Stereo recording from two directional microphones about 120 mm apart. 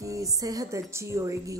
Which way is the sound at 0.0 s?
25° right (ahead or behind).